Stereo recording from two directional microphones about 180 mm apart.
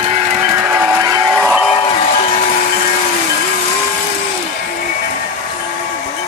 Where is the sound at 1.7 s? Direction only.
30° left (ahead or behind).